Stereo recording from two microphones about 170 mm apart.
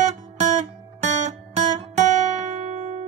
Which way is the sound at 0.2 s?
45° right (ahead or behind).